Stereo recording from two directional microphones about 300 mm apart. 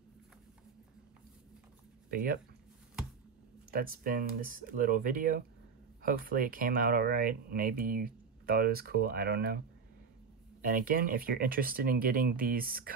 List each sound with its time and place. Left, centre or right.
2.0 s speech: right
3.7 s speech: right
10.6 s speech: right